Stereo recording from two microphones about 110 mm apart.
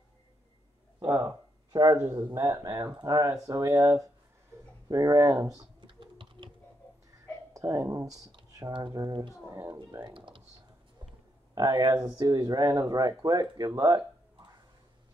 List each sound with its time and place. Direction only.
0.9 s a sound: 35° right (ahead or behind)
2.1 s speech: 45° right (ahead or behind)
2.4 s a woman's voice: 30° right (ahead or behind)
5.8 s typing: 50° right (ahead or behind)
7.5 s a woman's voice: 30° right (ahead or behind); by 10.4 s 50° right (ahead or behind)
11.5 s speech: 35° right (ahead or behind)